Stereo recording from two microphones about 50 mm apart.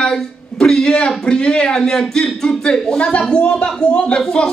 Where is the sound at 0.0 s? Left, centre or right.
Centre.